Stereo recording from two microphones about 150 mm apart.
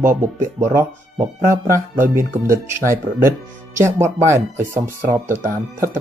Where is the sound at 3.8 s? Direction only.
20° right (ahead or behind).